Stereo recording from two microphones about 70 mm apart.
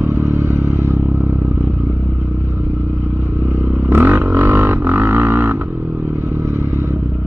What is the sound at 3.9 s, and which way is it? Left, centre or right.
Didgeridoo, right.